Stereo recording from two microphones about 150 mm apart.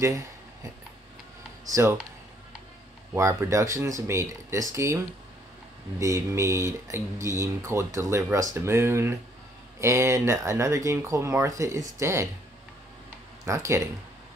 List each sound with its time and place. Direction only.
1.7 s speech: 20° right (ahead or behind)
3.2 s speech: 20° right (ahead or behind)
13.5 s speech: 20° right (ahead or behind)